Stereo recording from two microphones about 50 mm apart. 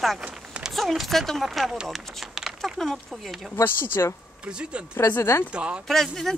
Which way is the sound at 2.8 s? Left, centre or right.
Centre.